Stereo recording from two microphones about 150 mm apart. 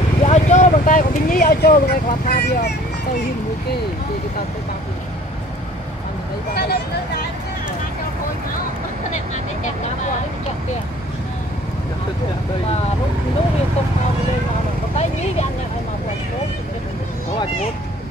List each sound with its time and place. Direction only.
0.2 s speech: 50° left (ahead or behind); by 2.7 s 90° left
6.5 s speech: 90° left